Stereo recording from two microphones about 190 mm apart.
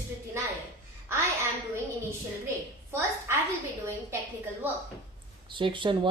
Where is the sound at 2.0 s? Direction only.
15° right (ahead or behind).